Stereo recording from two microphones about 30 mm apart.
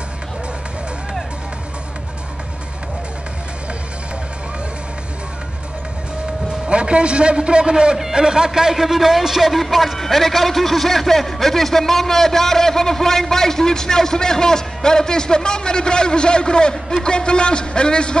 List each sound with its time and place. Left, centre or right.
6.7 s a man's voice: right; by 9.5 s centre
9.5 s a man's voice: centre; by 18.1 s left